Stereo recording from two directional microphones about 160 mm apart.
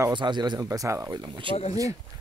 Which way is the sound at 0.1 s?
30° right (ahead or behind).